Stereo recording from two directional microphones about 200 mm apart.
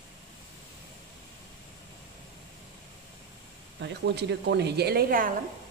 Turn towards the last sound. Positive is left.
turn(degrees=-45)  # may be behind; listen again after turning